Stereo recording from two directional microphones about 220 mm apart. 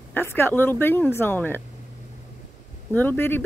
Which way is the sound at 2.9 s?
10° left (ahead or behind).